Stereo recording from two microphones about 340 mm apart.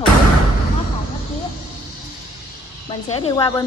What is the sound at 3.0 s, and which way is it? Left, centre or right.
Speech, centre.